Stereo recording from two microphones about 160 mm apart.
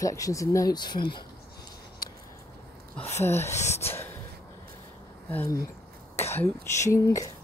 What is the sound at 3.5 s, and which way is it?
Speech, 45° left (ahead or behind).